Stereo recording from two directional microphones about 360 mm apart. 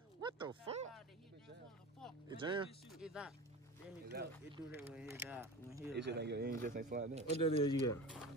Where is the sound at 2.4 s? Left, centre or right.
Centre.